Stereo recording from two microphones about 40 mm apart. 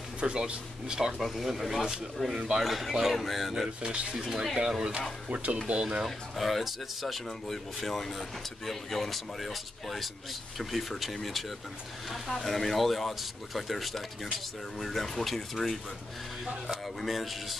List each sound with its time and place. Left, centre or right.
0.2 s speech: right
1.2 s speech: centre
3.8 s speech: right
5.3 s speech: right
5.7 s speech: right
6.0 s speech: centre
17.0 s speech: centre